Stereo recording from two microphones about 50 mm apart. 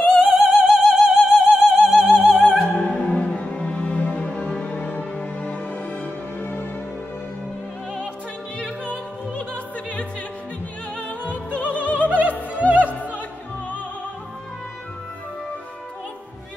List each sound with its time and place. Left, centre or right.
0.0 s opera: centre
2.7 s music: left
11.5 s opera: left
12.1 s opera: right